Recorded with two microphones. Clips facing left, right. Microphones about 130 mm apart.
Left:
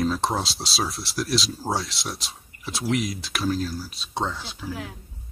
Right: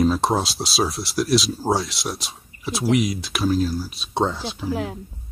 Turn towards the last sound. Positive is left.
turn(degrees=-30)  # may be behind; listen again after turning